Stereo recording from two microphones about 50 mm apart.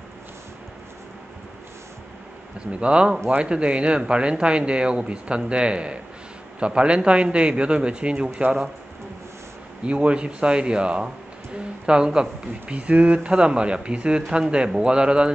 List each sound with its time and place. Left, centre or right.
2.7 s speech: right
9.8 s speech: right